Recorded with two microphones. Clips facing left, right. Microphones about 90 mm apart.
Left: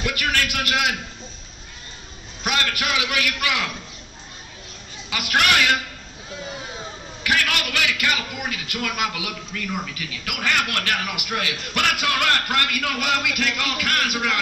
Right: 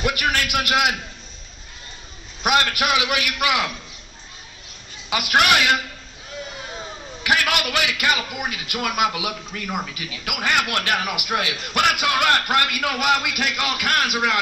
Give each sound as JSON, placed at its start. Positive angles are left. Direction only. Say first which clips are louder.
{"t": 0.1, "sound": "a man's voice", "louder": "right 2 dB", "side_deg": -20}
{"t": 2.4, "sound": "a man's voice", "louder": "right 5 dB", "side_deg": -20}
{"t": 5.1, "sound": "a man's voice", "louder": "right 3 dB", "side_deg": -20}
{"t": 7.2, "sound": "a man's voice", "louder": "right 2 dB", "side_deg": -15}